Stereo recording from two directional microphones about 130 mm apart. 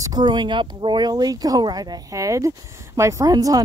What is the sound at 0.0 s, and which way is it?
Speech, 30° right (ahead or behind).